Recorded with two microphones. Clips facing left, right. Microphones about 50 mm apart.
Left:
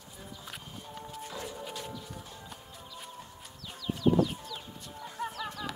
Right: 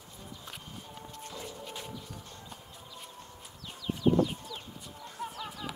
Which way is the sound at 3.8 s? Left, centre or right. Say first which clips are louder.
Even; centre.